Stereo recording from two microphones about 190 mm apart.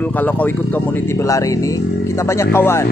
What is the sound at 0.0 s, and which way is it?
Speech, 10° left (ahead or behind).